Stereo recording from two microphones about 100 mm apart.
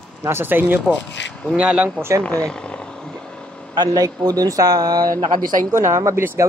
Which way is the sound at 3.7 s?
40° right (ahead or behind).